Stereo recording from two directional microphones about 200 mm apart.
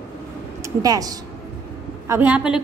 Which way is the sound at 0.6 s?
20° right (ahead or behind).